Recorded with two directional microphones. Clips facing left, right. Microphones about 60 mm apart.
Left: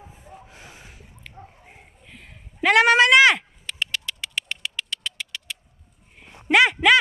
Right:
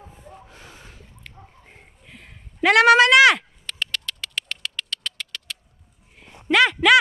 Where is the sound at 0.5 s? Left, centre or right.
Centre.